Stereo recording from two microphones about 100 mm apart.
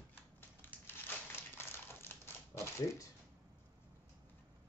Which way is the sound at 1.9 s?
20° left (ahead or behind).